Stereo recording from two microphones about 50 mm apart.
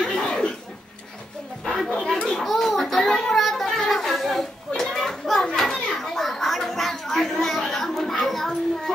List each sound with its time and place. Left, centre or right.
0.0 s chuckle: centre
2.0 s children playing: centre
3.7 s chatter: centre
4.7 s children playing: centre